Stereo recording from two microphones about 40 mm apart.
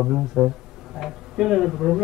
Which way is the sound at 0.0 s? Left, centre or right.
Centre.